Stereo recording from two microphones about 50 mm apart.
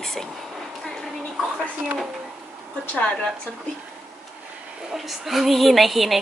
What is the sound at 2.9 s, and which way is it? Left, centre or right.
Speech, left.